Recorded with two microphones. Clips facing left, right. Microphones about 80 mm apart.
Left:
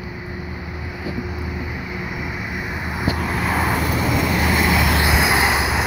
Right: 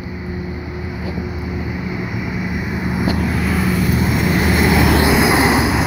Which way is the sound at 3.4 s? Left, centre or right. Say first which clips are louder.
Left 1 dB; left.